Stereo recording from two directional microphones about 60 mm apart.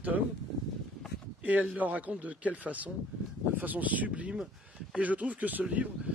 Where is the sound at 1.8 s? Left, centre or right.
Right.